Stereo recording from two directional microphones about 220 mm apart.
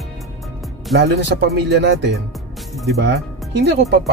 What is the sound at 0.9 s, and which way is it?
Speech, 45° right (ahead or behind).